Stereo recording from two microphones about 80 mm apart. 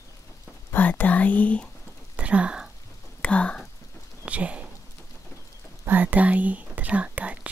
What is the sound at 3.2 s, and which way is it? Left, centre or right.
Whispering, centre.